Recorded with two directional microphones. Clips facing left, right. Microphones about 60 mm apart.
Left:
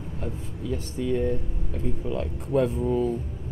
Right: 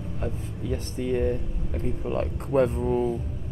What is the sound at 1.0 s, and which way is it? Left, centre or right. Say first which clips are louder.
Speech: even; right.